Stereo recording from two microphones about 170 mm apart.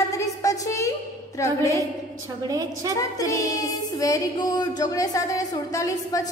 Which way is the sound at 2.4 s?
20° right (ahead or behind).